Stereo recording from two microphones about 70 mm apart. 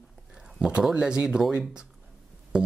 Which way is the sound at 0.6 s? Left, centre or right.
Centre.